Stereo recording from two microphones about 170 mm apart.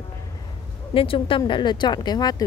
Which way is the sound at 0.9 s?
30° left (ahead or behind).